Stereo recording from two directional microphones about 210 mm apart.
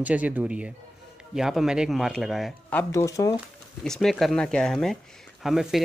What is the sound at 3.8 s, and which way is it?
Speech, centre (ahead or behind).